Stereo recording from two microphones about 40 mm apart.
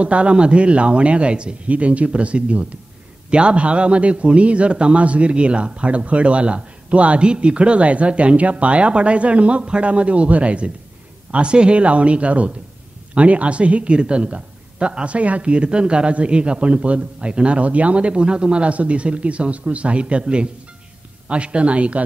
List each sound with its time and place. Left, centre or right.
0.0 s a man's voice: right